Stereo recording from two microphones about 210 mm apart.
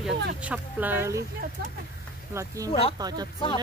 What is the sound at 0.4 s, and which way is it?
Speech, 5° right (ahead or behind).